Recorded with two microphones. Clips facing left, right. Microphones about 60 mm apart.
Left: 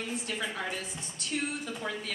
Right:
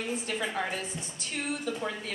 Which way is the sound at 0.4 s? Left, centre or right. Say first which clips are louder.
Right 3 dB; right.